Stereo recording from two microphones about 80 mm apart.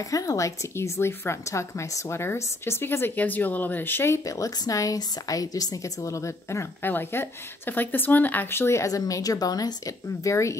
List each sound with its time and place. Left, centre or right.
0.1 s a woman's voice: left
4.2 s a woman's voice: left